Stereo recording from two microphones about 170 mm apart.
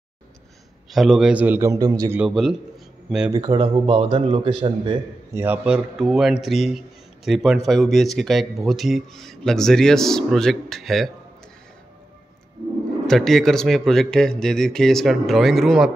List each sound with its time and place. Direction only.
0.9 s a man's voice: 5° right (ahead or behind); by 2.1 s 20° right (ahead or behind)
2.1 s speech: centre (ahead or behind)
3.3 s speech: 20° right (ahead or behind)
3.5 s a man's voice: 40° right (ahead or behind)
5.3 s speech: 10° right (ahead or behind)
13.0 s speech: centre (ahead or behind)